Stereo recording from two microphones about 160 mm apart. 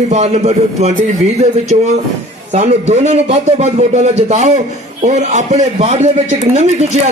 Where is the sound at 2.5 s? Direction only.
45° right (ahead or behind).